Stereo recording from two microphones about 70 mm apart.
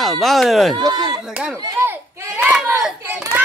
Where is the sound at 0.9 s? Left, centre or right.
Right.